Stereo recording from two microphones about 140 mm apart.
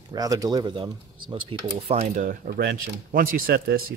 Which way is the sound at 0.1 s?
25° right (ahead or behind).